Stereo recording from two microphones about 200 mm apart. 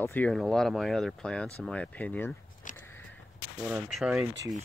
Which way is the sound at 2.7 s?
10° left (ahead or behind).